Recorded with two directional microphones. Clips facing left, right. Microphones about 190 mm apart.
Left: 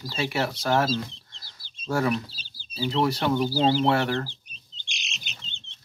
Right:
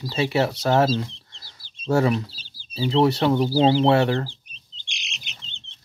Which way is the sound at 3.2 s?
25° right (ahead or behind).